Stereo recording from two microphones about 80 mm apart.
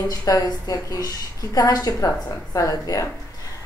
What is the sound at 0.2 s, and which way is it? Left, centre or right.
Speech, left.